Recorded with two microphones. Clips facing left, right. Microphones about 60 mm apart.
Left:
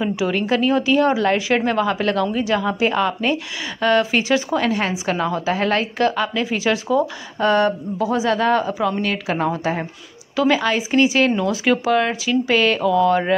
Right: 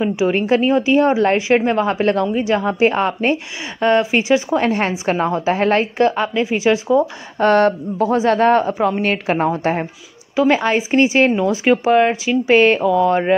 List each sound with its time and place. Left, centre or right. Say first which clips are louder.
0.0 s a woman's voice: right 4 dB; right
4.6 s a woman's voice: right 3 dB; right
7.3 s speech: right 4 dB; right
8.1 s a woman's voice: right 4 dB; right